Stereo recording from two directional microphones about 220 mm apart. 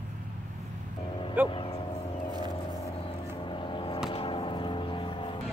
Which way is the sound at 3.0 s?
25° left (ahead or behind).